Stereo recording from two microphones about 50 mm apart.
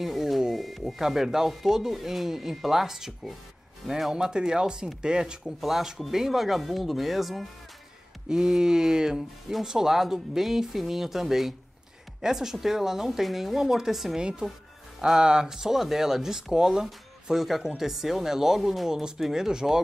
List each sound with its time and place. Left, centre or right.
0.0 s a sound: centre
0.5 s speech: centre
8.3 s speech: centre